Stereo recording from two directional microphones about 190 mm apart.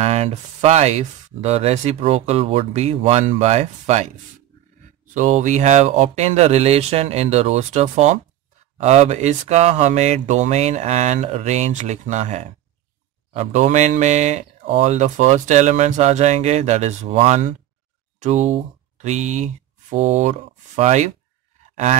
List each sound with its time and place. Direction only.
0.0 s speech: 35° right (ahead or behind)
5.1 s speech: 40° right (ahead or behind)